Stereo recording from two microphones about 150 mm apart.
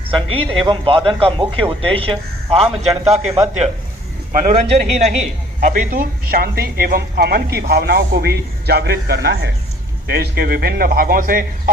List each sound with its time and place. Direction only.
0.3 s speech: 35° right (ahead or behind)
4.3 s a man's voice: 60° right (ahead or behind)
5.6 s a man's voice: 60° right (ahead or behind)